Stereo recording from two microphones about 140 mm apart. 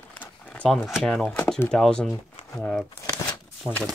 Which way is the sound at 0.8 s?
Centre (ahead or behind).